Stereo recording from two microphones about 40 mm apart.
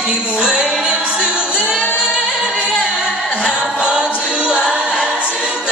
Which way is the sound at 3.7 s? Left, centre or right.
Right.